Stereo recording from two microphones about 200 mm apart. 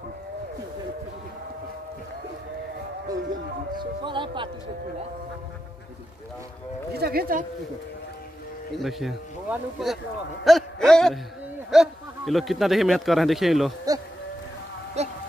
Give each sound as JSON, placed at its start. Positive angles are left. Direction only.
{"t": 3.7, "sound": "speech", "side_deg": -25}
{"t": 6.9, "sound": "speech", "side_deg": -50}
{"t": 8.7, "sound": "a man's voice", "side_deg": 0}
{"t": 15.0, "sound": "a sound", "side_deg": -35}